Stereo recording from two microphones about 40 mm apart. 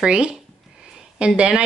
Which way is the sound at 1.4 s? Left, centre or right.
Right.